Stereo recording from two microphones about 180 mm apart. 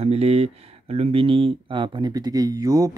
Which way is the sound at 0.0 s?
35° right (ahead or behind).